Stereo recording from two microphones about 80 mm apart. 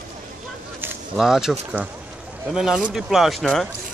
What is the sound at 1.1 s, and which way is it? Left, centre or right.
Speech, centre.